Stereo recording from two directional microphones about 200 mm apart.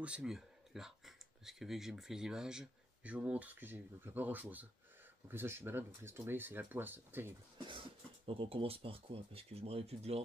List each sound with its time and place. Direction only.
0.0 s speech: 5° right (ahead or behind)
7.5 s speech: 25° right (ahead or behind)